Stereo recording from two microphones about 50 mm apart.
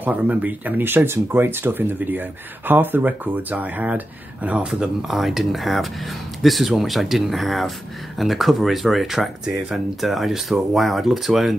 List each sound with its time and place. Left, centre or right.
0.0 s speech: right
0.8 s speech: right
3.0 s speech: right
5.0 s speech: centre